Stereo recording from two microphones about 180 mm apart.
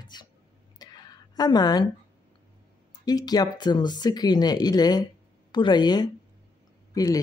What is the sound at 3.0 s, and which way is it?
Speech, 20° left (ahead or behind).